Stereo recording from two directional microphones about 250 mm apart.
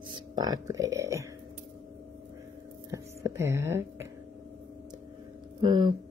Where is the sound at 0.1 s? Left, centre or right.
Centre.